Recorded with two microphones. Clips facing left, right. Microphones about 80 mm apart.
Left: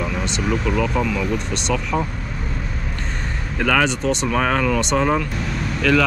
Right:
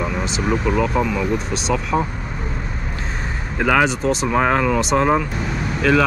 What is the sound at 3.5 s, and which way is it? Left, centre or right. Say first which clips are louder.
Speech: right 2 dB; centre.